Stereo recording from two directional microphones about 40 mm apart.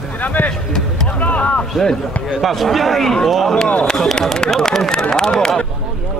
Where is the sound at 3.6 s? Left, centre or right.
Left.